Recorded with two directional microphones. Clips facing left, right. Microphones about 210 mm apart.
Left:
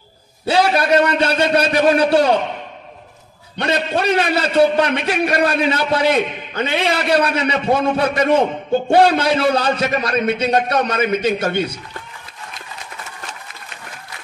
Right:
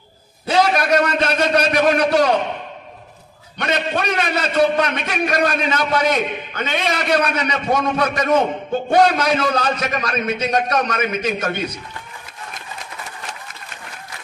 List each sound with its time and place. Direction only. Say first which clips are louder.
0.5 s a man's voice: left 1 dB; 30° left (ahead or behind)
3.5 s a man's voice: left 2 dB; 30° left (ahead or behind)